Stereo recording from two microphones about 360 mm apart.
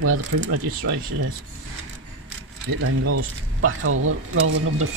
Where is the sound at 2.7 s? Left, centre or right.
Right.